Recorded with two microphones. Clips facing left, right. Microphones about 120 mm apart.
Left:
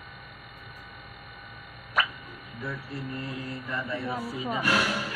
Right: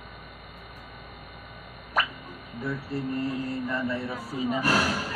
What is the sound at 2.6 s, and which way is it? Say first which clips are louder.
Mantra: right 5 dB; 35° right (ahead or behind).